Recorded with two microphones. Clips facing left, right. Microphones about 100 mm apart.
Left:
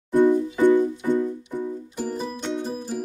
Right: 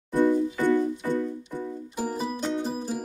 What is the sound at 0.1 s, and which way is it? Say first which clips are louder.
Music: left 4 dB; 15° left (ahead or behind).